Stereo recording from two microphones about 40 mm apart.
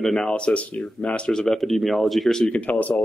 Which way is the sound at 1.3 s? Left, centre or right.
Centre.